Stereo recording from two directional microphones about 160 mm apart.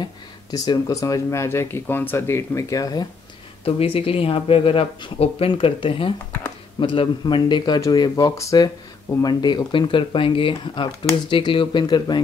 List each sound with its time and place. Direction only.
0.0 s speech: 25° left (ahead or behind)
3.6 s speech: 35° left (ahead or behind)